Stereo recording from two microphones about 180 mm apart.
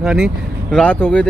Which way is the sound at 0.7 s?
10° left (ahead or behind).